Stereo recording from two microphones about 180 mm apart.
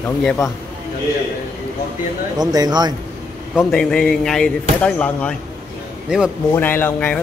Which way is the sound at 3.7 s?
5° left (ahead or behind).